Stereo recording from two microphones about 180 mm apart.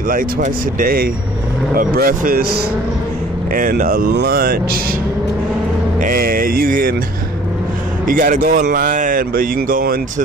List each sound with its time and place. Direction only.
0.1 s speech: 50° right (ahead or behind)
5.9 s speech: 50° right (ahead or behind)
8.1 s speech: 50° right (ahead or behind)